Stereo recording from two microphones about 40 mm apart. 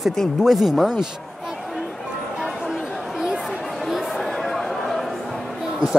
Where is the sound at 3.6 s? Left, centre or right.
Centre.